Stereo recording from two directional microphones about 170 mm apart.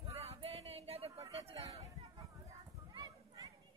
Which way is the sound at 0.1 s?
40° right (ahead or behind).